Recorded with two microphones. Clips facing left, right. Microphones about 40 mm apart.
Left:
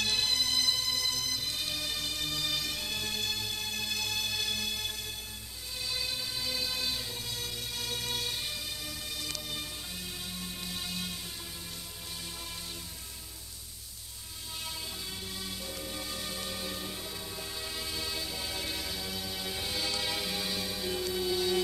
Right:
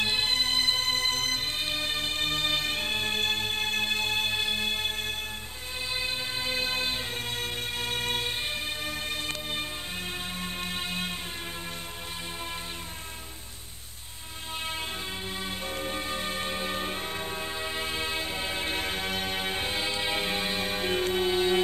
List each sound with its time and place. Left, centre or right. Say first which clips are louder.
0.0 s bagpipes: right 4 dB; right
5.9 s music: right 4 dB; right
15.4 s music: right 7 dB; right